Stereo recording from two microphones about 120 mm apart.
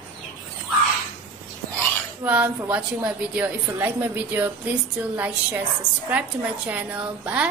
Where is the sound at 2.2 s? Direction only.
10° right (ahead or behind).